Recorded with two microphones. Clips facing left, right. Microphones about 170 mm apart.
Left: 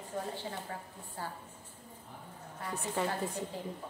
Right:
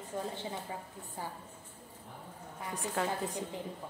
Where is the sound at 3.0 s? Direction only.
Centre (ahead or behind).